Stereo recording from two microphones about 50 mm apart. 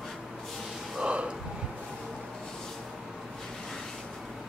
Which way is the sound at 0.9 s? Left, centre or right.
Centre.